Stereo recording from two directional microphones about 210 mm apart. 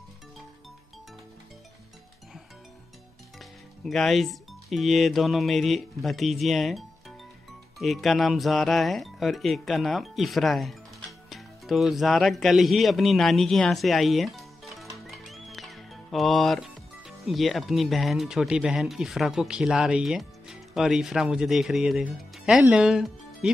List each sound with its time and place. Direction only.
3.3 s speech: centre (ahead or behind)